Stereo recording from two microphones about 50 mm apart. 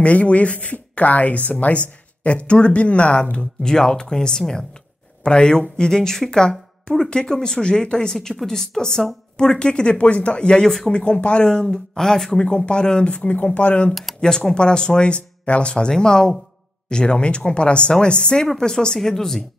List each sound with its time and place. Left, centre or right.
0.0 s speech: left
3.6 s a woman's voice: centre
11.6 s a woman's voice: centre
12.4 s speech: centre
14.2 s a woman's voice: centre